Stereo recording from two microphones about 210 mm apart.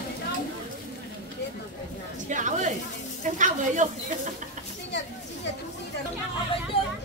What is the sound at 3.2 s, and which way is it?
Sizzle, 35° right (ahead or behind).